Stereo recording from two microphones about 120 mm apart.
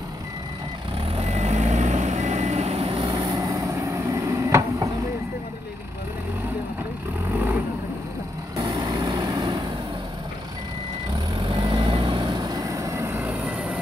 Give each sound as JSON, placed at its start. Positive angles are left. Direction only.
{"t": 1.1, "sound": "vehicle", "side_deg": -65}
{"t": 2.9, "sound": "vehicle", "side_deg": -35}
{"t": 8.5, "sound": "vehicle", "side_deg": -35}
{"t": 11.1, "sound": "vehicle", "side_deg": -45}